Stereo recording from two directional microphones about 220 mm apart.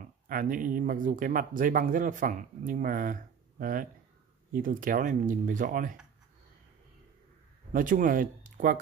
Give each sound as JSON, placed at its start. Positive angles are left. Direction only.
{"t": 0.3, "sound": "speech", "side_deg": -40}
{"t": 7.7, "sound": "speech", "side_deg": -35}